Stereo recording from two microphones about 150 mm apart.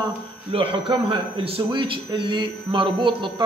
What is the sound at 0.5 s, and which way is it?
Speech, 40° right (ahead or behind).